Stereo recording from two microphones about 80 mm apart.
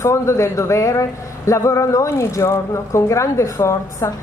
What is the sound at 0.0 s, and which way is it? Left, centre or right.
Speech, left.